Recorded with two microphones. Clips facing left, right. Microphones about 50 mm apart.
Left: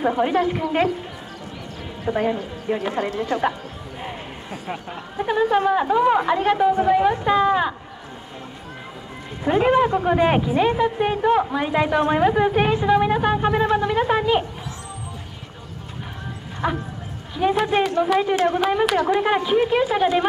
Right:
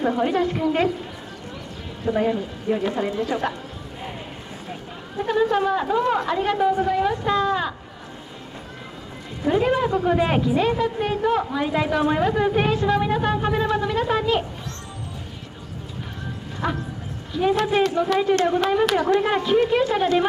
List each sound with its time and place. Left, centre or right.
0.0 s a woman's voice: centre
2.0 s a woman's voice: centre
3.3 s speech: centre
5.1 s a woman's voice: centre
9.4 s a woman's voice: left; by 12.1 s centre
12.1 s a woman's voice: centre
16.6 s a woman's voice: centre